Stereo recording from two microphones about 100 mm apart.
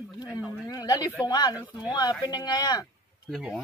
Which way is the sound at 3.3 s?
Centre (ahead or behind).